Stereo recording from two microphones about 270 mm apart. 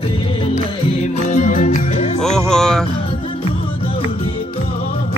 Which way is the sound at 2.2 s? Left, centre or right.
Centre.